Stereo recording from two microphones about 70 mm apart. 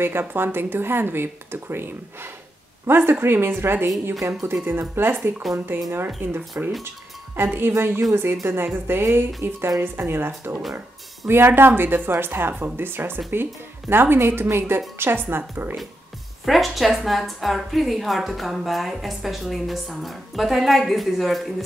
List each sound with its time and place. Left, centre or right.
0.0 s speech: right
4.2 s speech: right
4.6 s speech: right
16.4 s a woman's voice: centre